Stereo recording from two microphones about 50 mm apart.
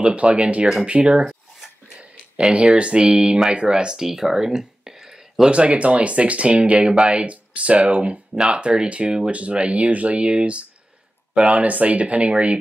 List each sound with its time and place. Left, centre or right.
0.0 s speech: right
1.2 s a sound: centre
2.5 s speech: right
5.5 s speech: right